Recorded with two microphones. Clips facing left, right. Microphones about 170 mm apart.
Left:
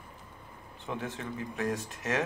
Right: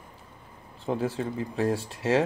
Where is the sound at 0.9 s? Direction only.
35° right (ahead or behind).